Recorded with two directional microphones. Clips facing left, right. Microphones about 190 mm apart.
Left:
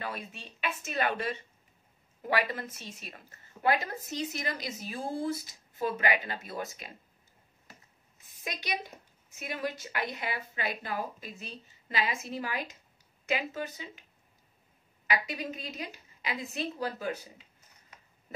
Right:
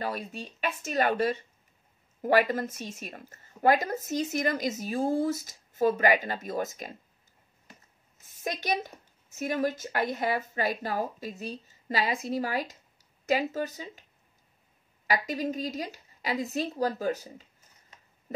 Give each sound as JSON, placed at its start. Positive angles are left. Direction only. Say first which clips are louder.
{"t": 0.0, "sound": "a woman's voice", "louder": "right 6 dB", "side_deg": -40}
{"t": 8.5, "sound": "a woman's voice", "louder": "right 6 dB", "side_deg": -45}
{"t": 15.0, "sound": "a woman's voice", "louder": "right 4 dB", "side_deg": -40}